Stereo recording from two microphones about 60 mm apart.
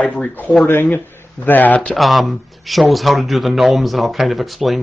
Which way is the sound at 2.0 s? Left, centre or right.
Centre.